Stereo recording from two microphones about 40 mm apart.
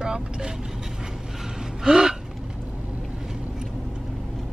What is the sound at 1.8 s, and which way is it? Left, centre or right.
Speech, centre.